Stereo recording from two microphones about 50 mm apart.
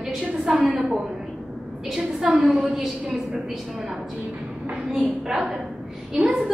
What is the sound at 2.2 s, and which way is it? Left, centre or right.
Speech, right.